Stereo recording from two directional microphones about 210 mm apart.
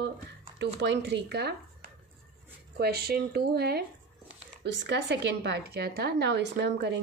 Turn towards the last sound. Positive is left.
turn(degrees=-55)  # may be behind; listen again after turning